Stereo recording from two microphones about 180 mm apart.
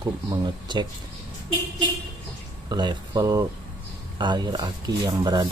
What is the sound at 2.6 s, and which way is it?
Speech, 25° right (ahead or behind).